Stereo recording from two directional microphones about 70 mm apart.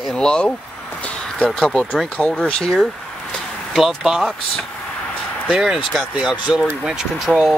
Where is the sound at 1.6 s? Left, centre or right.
Centre.